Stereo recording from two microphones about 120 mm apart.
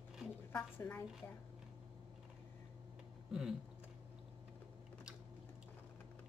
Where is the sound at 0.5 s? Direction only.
15° left (ahead or behind).